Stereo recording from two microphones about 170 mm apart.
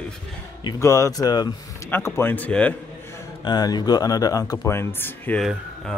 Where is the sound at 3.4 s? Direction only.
25° left (ahead or behind).